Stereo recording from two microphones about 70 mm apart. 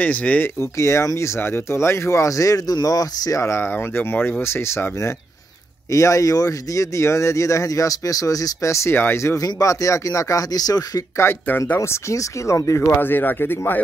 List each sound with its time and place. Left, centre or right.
0.0 s speech: left
0.6 s speech: left
5.9 s speech: left
9.4 s speech: left
11.4 s speech: left
12.9 s speech: left